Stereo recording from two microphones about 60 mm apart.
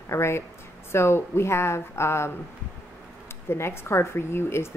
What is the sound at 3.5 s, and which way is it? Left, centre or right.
Speech, left.